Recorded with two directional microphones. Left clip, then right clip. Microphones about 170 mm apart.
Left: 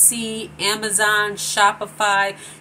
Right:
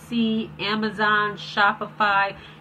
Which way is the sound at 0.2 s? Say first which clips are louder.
Left 2 dB; 30° left (ahead or behind).